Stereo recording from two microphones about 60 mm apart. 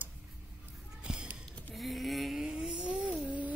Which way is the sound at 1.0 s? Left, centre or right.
Centre.